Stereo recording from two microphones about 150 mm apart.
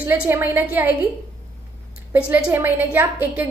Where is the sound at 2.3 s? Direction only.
15° right (ahead or behind).